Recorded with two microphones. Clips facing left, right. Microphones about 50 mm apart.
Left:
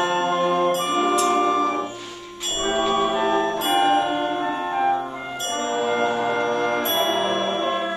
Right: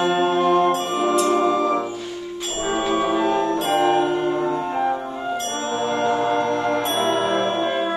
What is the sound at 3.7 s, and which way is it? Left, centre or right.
Music, left.